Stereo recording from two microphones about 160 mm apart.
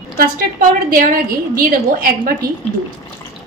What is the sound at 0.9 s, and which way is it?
A woman's voice, 65° right (ahead or behind).